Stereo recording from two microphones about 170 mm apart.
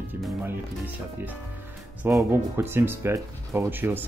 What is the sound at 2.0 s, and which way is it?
Speech, 10° right (ahead or behind).